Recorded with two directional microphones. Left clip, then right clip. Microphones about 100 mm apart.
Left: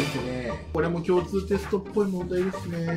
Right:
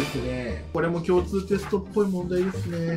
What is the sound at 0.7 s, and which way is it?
Speech, 40° right (ahead or behind).